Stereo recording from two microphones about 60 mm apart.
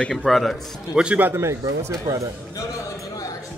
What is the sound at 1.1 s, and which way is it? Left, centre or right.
Speech, right.